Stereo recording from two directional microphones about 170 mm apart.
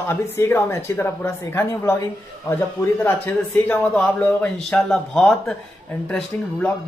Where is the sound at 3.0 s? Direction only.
10° left (ahead or behind).